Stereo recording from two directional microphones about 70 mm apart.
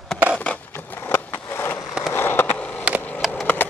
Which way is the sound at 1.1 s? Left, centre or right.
Left.